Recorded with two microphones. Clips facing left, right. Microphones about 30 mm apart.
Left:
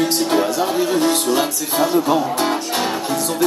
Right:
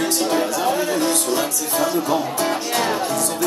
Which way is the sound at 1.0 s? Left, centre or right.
Left.